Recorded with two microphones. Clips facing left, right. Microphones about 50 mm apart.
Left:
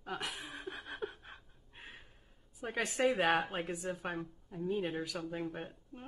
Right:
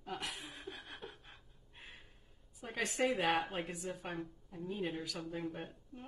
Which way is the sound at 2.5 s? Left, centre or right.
Centre.